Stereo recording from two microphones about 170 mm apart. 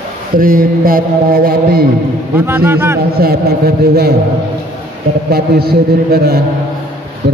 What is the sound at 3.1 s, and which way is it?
Speech, 65° right (ahead or behind).